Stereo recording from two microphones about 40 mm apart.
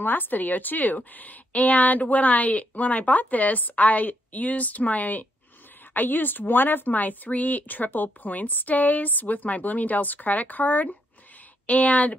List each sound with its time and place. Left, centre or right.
0.0 s speech: left
11.6 s speech: left